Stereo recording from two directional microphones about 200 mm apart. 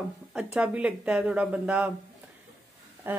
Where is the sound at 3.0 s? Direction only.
10° right (ahead or behind).